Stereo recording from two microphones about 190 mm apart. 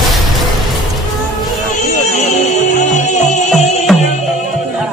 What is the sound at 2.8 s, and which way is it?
Music, 40° left (ahead or behind).